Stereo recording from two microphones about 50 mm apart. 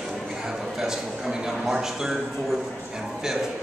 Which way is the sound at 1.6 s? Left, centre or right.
Centre.